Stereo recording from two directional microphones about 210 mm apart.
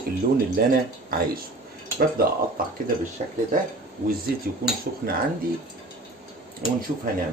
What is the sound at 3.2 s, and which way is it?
Speech, 30° right (ahead or behind).